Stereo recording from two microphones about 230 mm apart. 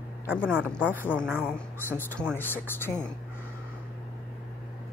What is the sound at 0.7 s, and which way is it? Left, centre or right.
Speech, centre.